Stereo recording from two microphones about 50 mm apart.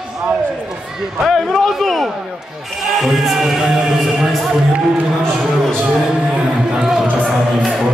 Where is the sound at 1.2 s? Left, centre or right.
Centre.